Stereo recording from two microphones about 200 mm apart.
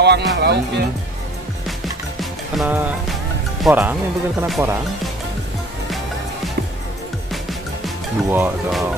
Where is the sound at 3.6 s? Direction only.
10° right (ahead or behind).